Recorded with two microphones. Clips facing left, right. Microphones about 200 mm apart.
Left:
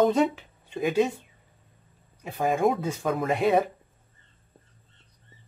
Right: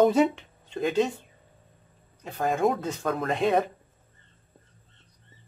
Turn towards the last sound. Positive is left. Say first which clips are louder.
# left 1 dB
turn(degrees=5)  # may be behind; listen again after turning